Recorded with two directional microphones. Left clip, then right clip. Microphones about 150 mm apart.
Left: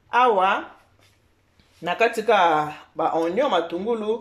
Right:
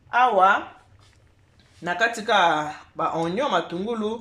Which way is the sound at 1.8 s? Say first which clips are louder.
Left 3 dB; 10° left (ahead or behind).